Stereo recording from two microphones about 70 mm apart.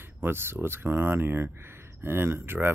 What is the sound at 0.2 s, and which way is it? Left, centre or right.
Speech, right.